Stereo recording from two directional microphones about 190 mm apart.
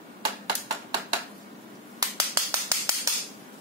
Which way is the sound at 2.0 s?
20° right (ahead or behind).